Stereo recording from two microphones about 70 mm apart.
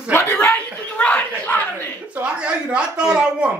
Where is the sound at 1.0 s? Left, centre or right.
Centre.